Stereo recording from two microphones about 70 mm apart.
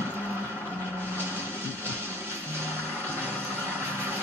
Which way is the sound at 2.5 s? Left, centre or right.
Left.